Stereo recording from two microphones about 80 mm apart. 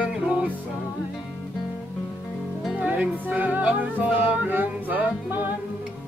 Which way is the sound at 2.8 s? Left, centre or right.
Centre.